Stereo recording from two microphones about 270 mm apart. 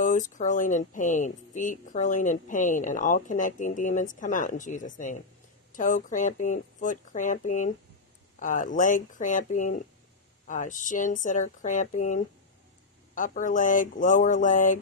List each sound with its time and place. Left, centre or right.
0.0 s speech: left